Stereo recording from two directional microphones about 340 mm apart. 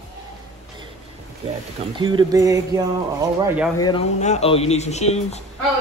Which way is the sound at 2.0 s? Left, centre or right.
Centre.